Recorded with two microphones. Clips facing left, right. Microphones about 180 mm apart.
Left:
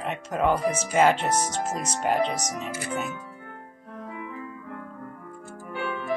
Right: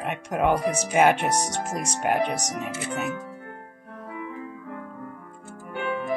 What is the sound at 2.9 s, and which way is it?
Speech, 70° right (ahead or behind).